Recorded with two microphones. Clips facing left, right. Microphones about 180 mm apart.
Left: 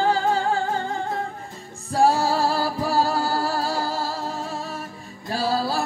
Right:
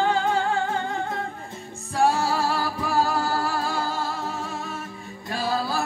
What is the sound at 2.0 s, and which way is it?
Music, 35° left (ahead or behind).